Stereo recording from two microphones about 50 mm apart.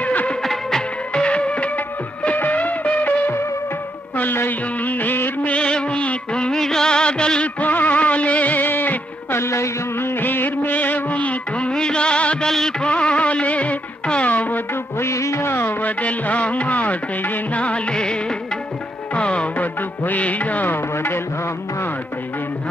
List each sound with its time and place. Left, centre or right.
0.0 s music: left
0.4 s music: centre; by 1.7 s left
2.3 s music: left
5.4 s music: left
6.6 s music of bollywood: centre
7.6 s music: left
9.4 s music: left
9.9 s music: left
15.0 s music: left
15.4 s music: left
15.8 s music: left
17.6 s music: left
19.1 s music: left
20.7 s a sound: left